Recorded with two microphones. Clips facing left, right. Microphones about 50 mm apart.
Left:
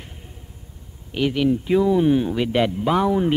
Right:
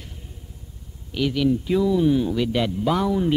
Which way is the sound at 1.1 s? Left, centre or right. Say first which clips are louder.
Left 1 dB; left.